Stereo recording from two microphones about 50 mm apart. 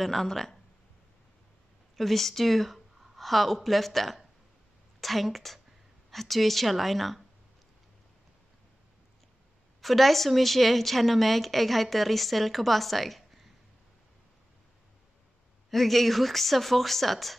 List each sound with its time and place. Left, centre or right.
0.0 s a woman's voice: centre
2.0 s a woman's voice: centre
9.8 s a woman's voice: centre
15.7 s a woman's voice: centre